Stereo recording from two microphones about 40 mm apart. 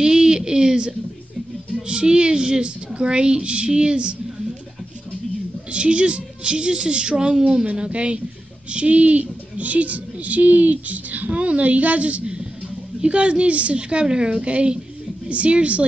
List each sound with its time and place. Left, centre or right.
0.0 s a sound: centre
1.9 s a woman's voice: right
5.7 s a woman's voice: right